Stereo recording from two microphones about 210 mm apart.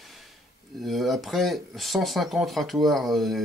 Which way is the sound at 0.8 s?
Centre (ahead or behind).